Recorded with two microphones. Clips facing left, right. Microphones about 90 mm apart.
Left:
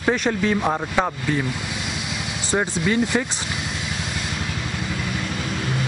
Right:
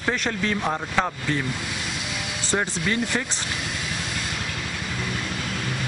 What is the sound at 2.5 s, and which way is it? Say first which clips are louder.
Speech: left 4 dB; 15° left (ahead or behind).